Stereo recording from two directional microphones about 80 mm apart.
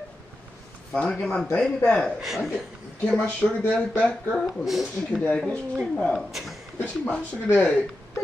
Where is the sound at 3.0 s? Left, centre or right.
Centre.